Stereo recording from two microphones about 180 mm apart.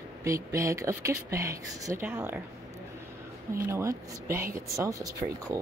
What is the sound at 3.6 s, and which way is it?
Speech, 15° right (ahead or behind).